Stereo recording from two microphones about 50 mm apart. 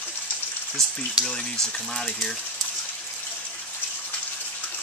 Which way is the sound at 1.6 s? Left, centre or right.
Centre.